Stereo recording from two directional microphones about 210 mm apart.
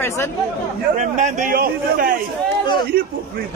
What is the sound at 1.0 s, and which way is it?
A man's voice, 35° right (ahead or behind).